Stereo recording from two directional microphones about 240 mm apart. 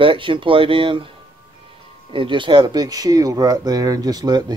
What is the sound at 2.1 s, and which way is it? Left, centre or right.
Speech, right.